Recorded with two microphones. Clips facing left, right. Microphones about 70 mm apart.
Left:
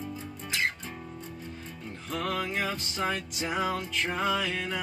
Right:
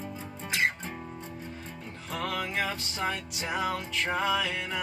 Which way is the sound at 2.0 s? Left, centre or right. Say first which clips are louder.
Left 1 dB; centre.